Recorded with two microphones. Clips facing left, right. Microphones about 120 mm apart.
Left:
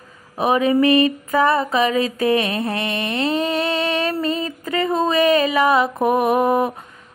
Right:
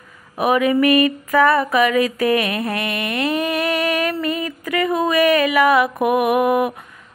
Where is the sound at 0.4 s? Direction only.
25° left (ahead or behind).